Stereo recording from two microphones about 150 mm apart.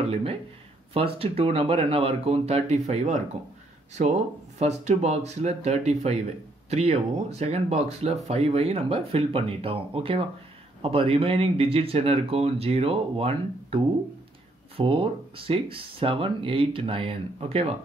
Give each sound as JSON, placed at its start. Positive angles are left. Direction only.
{"t": 0.0, "sound": "speech", "side_deg": -40}
{"t": 14.8, "sound": "speech", "side_deg": -35}